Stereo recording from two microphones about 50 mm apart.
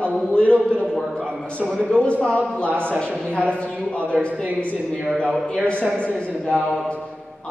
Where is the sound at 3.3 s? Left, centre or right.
Left.